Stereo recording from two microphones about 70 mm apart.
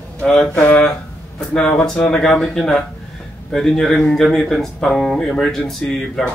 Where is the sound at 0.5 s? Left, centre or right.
Left.